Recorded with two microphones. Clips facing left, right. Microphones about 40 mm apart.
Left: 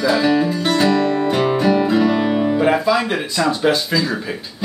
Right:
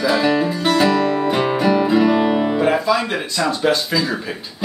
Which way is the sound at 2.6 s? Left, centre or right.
Centre.